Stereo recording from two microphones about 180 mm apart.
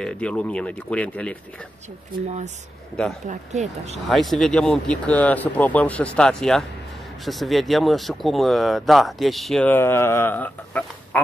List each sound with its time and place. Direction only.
0.0 s speech: 5° left (ahead or behind)
3.3 s speech: 35° right (ahead or behind)
4.1 s speech: centre (ahead or behind)